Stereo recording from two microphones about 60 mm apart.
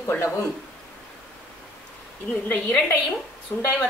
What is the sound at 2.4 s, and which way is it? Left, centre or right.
Speech, left.